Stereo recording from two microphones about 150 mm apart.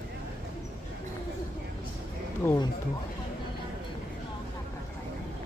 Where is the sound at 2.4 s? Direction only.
15° left (ahead or behind).